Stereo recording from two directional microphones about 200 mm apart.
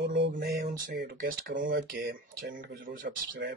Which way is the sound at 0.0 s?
60° right (ahead or behind).